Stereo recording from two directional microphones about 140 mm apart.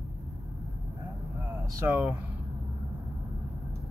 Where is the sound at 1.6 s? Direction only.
15° right (ahead or behind).